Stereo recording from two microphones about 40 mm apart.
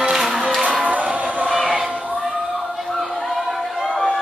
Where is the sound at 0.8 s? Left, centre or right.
Right.